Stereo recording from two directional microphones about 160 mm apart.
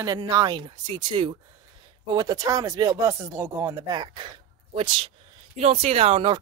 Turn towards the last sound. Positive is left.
turn(degrees=-30)  # may be behind; listen again after turning